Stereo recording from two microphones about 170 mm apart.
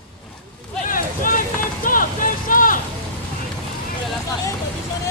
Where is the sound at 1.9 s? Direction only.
55° left (ahead or behind).